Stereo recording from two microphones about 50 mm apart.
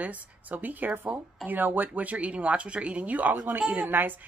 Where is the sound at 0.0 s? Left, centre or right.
Right.